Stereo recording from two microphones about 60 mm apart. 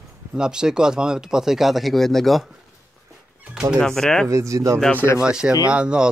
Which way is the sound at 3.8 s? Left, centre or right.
Centre.